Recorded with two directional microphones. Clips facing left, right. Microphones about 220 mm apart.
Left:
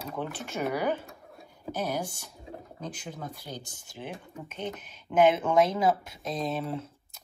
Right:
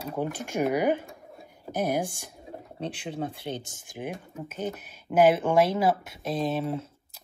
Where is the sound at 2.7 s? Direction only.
30° right (ahead or behind).